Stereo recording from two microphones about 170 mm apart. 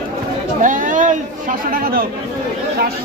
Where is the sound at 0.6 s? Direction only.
50° right (ahead or behind).